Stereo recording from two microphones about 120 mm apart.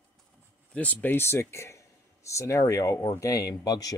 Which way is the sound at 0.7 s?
10° left (ahead or behind).